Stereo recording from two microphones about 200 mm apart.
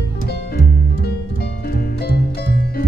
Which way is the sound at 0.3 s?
55° left (ahead or behind).